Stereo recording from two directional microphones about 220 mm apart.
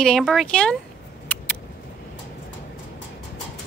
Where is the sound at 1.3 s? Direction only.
5° left (ahead or behind).